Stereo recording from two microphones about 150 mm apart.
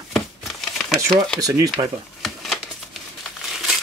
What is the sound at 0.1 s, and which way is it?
Crumpling, centre (ahead or behind).